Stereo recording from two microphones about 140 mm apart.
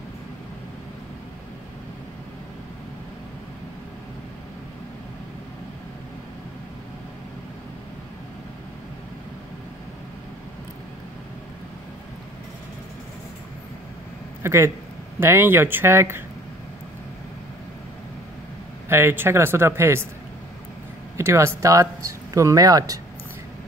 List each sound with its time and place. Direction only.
14.4 s speech: 20° right (ahead or behind)
18.9 s speech: 15° right (ahead or behind)
21.2 s speech: 20° right (ahead or behind)